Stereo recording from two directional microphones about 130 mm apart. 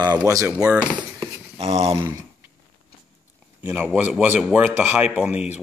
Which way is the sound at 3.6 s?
15° right (ahead or behind).